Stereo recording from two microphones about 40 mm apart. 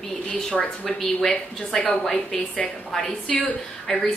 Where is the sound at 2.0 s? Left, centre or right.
Centre.